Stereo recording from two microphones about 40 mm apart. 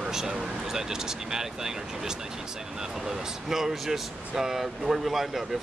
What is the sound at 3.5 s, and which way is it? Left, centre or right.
Speech, centre.